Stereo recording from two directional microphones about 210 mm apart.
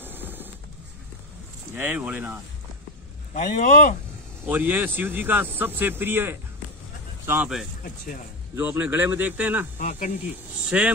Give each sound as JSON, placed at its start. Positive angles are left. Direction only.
{"t": 0.0, "sound": "music", "side_deg": -10}
{"t": 1.8, "sound": "speech", "side_deg": -5}
{"t": 3.3, "sound": "speech", "side_deg": 40}
{"t": 4.5, "sound": "speech", "side_deg": -10}
{"t": 9.8, "sound": "speech", "side_deg": 35}
{"t": 10.7, "sound": "speech", "side_deg": -5}